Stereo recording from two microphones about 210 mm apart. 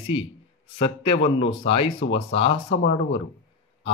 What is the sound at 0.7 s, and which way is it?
Speech, 25° left (ahead or behind).